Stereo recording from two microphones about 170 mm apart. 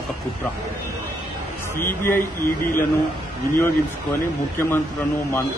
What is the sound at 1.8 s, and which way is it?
Speech, 15° left (ahead or behind).